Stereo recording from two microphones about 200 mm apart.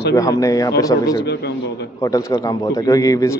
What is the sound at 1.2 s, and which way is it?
Speech, 55° left (ahead or behind).